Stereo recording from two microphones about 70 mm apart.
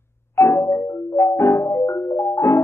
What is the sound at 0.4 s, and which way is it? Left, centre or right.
Marimba, left.